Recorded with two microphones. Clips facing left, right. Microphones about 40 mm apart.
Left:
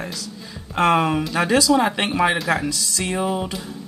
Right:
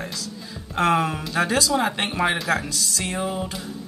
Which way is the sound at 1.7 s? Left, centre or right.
Centre.